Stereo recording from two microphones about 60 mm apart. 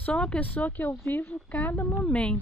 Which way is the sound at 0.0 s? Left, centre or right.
Centre.